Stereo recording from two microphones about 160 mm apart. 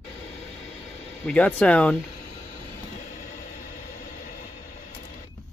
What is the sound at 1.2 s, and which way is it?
Speech, 10° left (ahead or behind).